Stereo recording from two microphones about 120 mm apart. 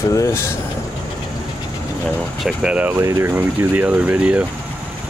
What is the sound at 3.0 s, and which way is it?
Speech, 25° right (ahead or behind).